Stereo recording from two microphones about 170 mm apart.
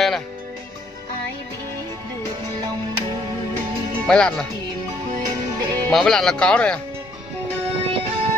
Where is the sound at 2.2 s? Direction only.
25° right (ahead or behind).